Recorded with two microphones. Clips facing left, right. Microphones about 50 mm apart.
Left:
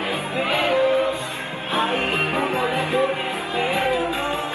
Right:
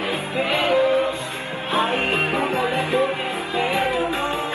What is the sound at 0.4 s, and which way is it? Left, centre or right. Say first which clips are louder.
Music: right 1 dB; right.